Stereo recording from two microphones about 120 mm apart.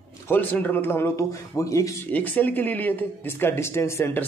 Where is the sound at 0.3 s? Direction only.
15° left (ahead or behind).